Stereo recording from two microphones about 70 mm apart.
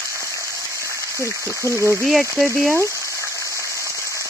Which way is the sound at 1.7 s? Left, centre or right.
Right.